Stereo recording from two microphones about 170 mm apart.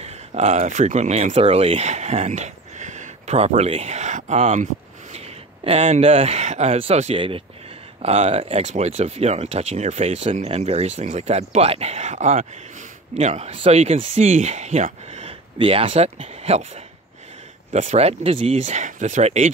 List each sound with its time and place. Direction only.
0.0 s speech: 40° right (ahead or behind)